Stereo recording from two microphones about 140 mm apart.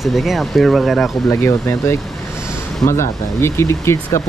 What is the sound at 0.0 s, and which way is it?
Speech, centre (ahead or behind).